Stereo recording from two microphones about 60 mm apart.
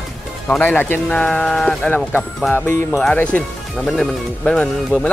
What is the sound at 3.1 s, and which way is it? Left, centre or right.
Speech, left.